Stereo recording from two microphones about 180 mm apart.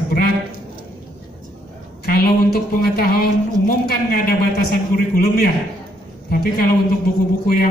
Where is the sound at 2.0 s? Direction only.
55° left (ahead or behind).